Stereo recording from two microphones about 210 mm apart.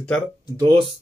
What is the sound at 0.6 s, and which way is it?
Speech, 25° right (ahead or behind).